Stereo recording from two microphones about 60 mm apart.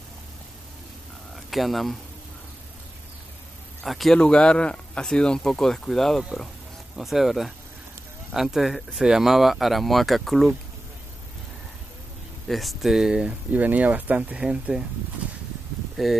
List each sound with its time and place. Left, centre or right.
1.3 s speech: centre
3.8 s speech: centre
4.2 s speech: centre
12.4 s speech: centre
15.2 s a sound: right
16.0 s speech: centre